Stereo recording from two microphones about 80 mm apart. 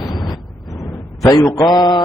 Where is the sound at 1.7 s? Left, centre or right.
Left.